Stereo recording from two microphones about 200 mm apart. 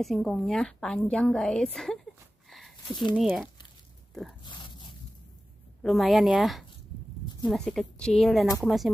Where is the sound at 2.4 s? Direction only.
Centre (ahead or behind).